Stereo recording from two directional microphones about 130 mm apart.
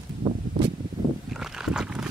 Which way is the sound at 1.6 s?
5° right (ahead or behind).